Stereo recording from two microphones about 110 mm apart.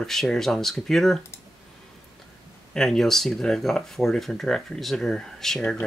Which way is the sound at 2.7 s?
5° left (ahead or behind).